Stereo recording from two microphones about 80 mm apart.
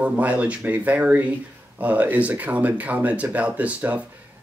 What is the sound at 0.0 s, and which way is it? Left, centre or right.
Speech, centre.